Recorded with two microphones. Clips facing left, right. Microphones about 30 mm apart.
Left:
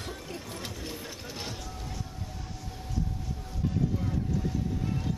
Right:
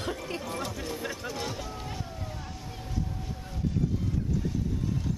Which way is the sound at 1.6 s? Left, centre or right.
Right.